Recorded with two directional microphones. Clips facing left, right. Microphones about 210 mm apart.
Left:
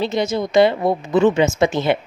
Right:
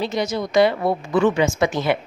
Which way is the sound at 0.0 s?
25° left (ahead or behind).